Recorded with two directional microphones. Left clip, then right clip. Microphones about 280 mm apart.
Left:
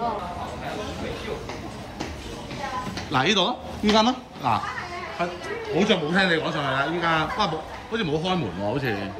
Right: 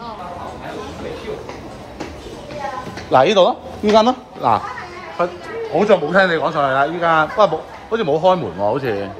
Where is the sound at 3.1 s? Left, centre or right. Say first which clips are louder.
Right 10 dB; centre.